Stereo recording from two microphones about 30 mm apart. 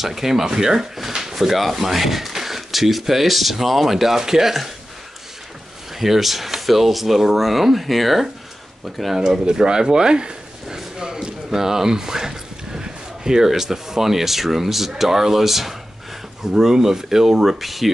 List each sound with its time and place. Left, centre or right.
0.0 s speech: centre
5.9 s speech: centre
9.2 s a sound: right
13.5 s speech: centre